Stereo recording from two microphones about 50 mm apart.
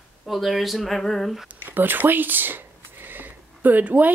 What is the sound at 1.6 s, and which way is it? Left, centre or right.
Speech, right.